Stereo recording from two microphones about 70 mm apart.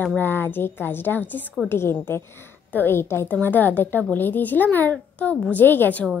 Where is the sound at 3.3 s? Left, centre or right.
Left.